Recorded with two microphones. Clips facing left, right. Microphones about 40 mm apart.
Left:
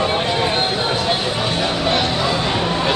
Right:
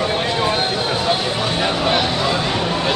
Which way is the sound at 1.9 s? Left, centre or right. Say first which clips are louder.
Even; centre.